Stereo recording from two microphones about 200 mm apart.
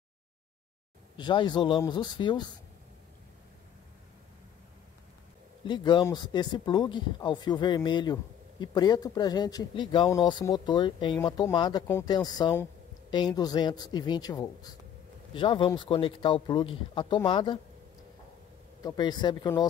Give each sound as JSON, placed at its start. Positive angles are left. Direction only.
{"t": 1.1, "sound": "speech", "side_deg": 20}
{"t": 5.7, "sound": "speech", "side_deg": 25}
{"t": 18.8, "sound": "speech", "side_deg": 20}